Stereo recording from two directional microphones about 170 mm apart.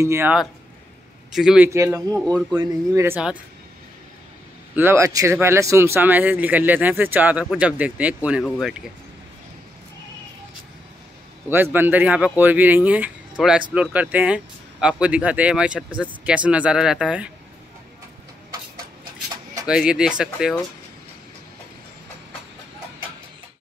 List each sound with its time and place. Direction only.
0.0 s speech: 15° right (ahead or behind)
1.3 s speech: 5° right (ahead or behind)
1.7 s speech: 15° right (ahead or behind)
4.7 s speech: 15° right (ahead or behind)
11.5 s speech: 10° right (ahead or behind)
19.7 s speech: 5° right (ahead or behind)